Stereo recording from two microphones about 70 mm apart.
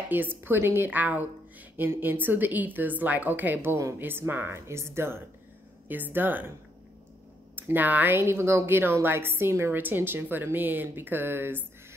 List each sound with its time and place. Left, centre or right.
0.1 s a woman's voice: right
7.6 s a woman's voice: right